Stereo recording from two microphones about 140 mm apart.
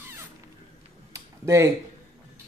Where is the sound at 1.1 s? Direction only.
20° right (ahead or behind).